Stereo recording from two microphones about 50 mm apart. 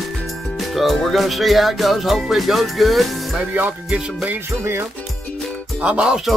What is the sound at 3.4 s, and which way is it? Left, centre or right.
Music, right.